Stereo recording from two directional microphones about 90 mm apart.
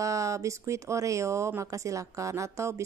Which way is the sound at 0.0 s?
35° right (ahead or behind).